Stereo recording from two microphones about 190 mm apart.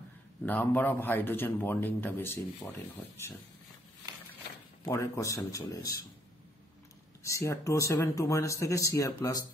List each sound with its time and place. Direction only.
0.5 s speech: 10° left (ahead or behind)
4.8 s speech: 15° left (ahead or behind)
7.2 s speech: 15° left (ahead or behind)